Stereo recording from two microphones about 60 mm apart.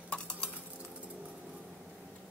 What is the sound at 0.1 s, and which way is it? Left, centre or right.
Dishes, centre.